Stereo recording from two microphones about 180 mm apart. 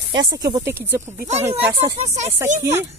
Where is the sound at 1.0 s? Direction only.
40° right (ahead or behind).